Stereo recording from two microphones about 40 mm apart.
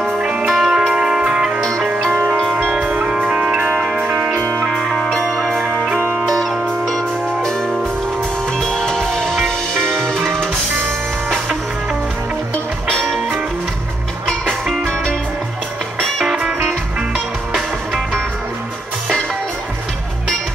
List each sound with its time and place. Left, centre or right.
0.2 s music: right
0.5 s music: centre
0.9 s music: right
1.6 s music: centre
2.7 s music: right
3.3 s music: right
4.1 s music: centre
4.9 s music: centre
8.5 s music: centre
12.9 s music: centre